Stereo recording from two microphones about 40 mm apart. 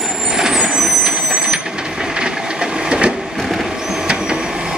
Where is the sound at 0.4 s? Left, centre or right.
Centre.